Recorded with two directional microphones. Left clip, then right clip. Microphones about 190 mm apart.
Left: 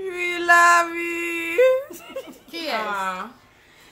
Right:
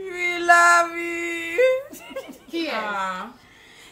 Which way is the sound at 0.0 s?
5° left (ahead or behind).